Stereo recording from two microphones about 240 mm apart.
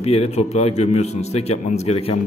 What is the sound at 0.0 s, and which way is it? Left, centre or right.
A man's voice, left.